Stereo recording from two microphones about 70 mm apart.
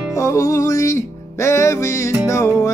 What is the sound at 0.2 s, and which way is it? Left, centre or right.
Music, left.